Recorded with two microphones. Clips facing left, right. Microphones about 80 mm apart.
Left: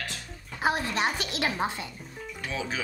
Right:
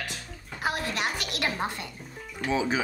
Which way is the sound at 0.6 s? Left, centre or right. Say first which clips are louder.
Left 3 dB; left.